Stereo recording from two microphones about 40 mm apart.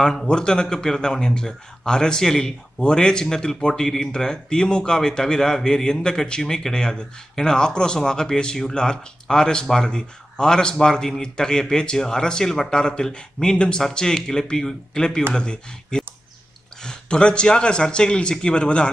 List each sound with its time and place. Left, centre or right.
0.0 s speech: centre
0.3 s a man's voice: left